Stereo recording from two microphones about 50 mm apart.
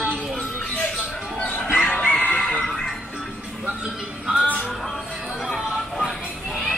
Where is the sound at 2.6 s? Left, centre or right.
Centre.